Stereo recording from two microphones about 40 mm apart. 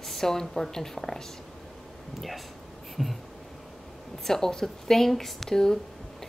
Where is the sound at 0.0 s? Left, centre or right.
Centre.